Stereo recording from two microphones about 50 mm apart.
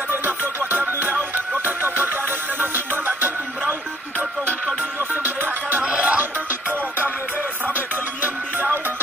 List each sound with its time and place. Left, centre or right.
0.1 s music: right
5.1 s music: right
5.8 s music: right